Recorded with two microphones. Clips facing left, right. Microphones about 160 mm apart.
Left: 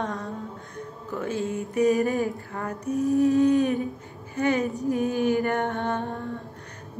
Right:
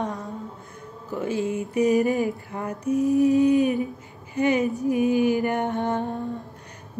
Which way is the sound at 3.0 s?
15° right (ahead or behind).